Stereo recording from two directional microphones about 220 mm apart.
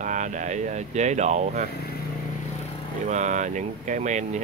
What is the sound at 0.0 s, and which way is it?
Speech, 35° right (ahead or behind).